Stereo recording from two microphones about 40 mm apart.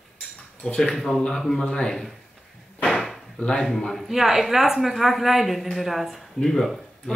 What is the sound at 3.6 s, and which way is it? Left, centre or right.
Speech, centre.